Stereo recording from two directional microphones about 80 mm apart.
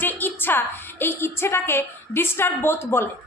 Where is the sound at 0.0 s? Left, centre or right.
Left.